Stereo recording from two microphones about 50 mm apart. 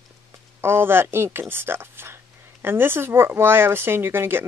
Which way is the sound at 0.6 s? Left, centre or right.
Right.